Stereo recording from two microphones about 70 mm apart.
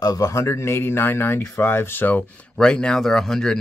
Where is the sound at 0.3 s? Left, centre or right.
Left.